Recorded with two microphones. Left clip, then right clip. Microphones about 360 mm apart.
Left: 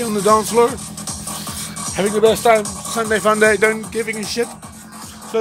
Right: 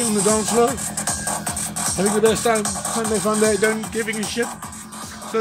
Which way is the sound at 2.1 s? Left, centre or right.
Centre.